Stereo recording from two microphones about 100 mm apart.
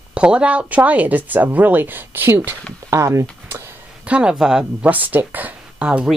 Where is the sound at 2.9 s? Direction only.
30° right (ahead or behind).